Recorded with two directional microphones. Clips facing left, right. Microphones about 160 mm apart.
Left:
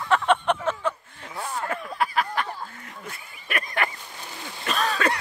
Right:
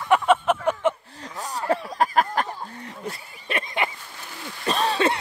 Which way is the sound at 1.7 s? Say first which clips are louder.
Right 7 dB; 40° right (ahead or behind).